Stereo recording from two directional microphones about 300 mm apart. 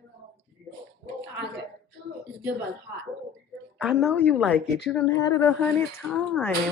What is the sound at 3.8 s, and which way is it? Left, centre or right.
A woman's voice, centre.